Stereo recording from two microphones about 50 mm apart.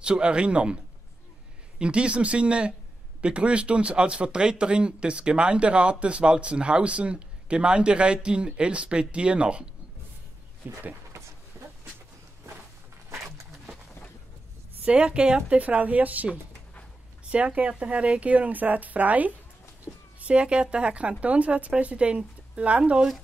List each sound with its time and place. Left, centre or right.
0.0 s speech: right
1.8 s speech: right
10.6 s speech: right
11.6 s dog: right
14.9 s speech: right
17.3 s speech: right